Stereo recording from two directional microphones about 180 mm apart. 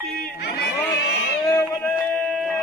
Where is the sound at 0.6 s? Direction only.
65° left (ahead or behind).